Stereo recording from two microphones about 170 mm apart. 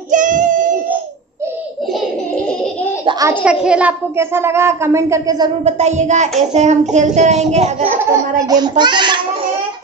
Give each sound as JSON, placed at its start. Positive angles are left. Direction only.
{"t": 0.1, "sound": "child singing", "side_deg": -50}
{"t": 3.1, "sound": "a sound", "side_deg": -20}
{"t": 3.6, "sound": "speech", "side_deg": -5}
{"t": 5.7, "sound": "child singing", "side_deg": -40}
{"t": 7.9, "sound": "a child's voice", "side_deg": -15}